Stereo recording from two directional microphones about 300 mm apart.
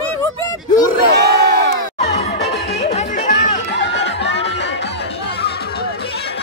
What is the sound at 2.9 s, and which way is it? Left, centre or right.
Music, left.